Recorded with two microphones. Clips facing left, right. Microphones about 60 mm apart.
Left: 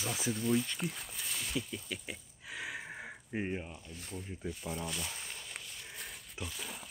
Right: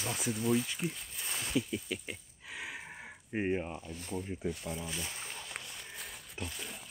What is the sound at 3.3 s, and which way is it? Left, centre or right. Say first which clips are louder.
Speech: right 5 dB; right.